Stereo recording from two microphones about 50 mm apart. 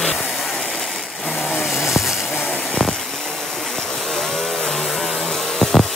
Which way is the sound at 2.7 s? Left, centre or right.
Centre.